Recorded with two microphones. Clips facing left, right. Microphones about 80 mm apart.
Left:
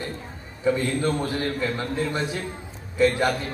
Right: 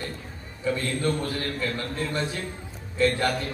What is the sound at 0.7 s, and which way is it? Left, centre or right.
A man's voice, centre.